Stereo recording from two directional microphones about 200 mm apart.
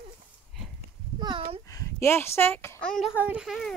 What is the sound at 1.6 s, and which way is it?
Speech, 15° left (ahead or behind).